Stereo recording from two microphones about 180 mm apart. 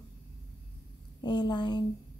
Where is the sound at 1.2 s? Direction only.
25° left (ahead or behind).